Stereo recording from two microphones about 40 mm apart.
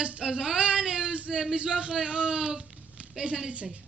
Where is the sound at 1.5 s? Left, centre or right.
Right.